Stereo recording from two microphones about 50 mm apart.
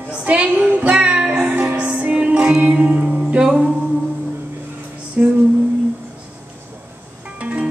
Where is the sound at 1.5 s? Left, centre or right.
Right.